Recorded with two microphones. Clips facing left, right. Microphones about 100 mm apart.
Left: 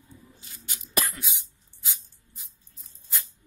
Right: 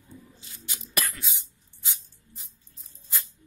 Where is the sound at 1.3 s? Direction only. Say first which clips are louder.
Even; centre (ahead or behind).